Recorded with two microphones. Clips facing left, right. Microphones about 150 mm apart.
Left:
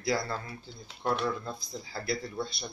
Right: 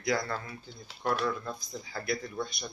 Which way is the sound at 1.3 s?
25° left (ahead or behind).